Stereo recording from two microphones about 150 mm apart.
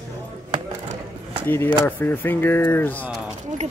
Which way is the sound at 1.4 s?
15° left (ahead or behind).